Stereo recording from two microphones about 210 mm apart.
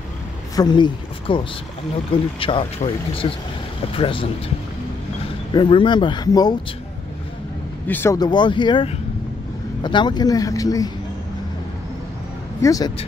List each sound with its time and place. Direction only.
0.6 s speech: 20° left (ahead or behind)
2.4 s speech: 25° left (ahead or behind)
5.5 s speech: 25° left (ahead or behind)
7.9 s speech: 10° left (ahead or behind)
12.6 s speech: 15° left (ahead or behind)